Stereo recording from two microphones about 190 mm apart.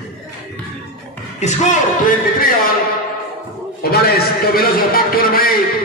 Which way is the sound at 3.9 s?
55° left (ahead or behind).